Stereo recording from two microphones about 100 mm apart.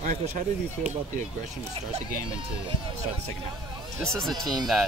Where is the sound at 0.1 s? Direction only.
90° right.